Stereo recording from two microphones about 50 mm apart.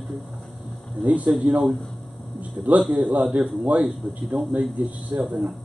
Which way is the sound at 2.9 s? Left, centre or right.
Right.